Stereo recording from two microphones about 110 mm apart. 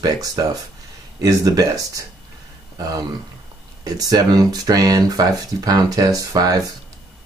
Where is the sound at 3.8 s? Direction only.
35° right (ahead or behind).